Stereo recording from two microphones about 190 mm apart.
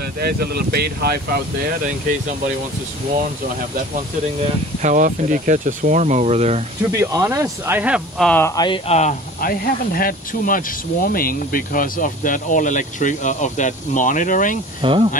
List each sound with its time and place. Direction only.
0.2 s speech: 55° right (ahead or behind)
4.8 s speech: 45° right (ahead or behind)
6.9 s speech: 15° right (ahead or behind)
8.3 s speech: 10° left (ahead or behind); by 9.1 s 35° left (ahead or behind)
9.4 s speech: 50° left (ahead or behind)
14.8 s speech: 25° right (ahead or behind)